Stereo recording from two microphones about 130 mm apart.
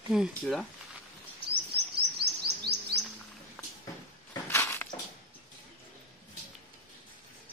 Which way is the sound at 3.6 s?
5° left (ahead or behind).